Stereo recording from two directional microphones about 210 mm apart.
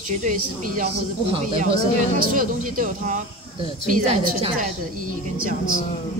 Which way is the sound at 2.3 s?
40° right (ahead or behind).